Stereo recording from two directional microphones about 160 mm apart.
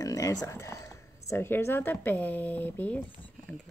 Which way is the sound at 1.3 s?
15° left (ahead or behind).